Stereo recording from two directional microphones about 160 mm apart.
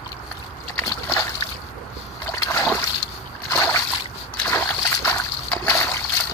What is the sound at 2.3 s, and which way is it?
Splash, 15° left (ahead or behind).